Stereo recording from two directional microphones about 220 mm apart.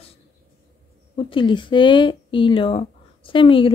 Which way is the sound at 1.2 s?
20° left (ahead or behind).